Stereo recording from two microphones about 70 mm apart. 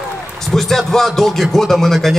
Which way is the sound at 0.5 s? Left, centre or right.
Centre.